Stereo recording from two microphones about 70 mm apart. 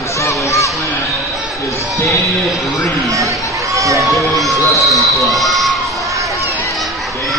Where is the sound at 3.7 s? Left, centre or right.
Right.